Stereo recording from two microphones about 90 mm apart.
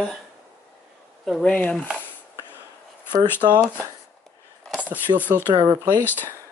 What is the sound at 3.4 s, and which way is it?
Speech, 60° right (ahead or behind).